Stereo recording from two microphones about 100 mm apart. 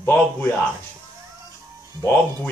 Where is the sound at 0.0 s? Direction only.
15° left (ahead or behind).